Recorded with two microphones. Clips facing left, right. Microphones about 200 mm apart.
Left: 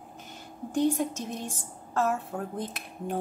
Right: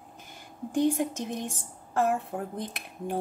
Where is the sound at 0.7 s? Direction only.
15° right (ahead or behind).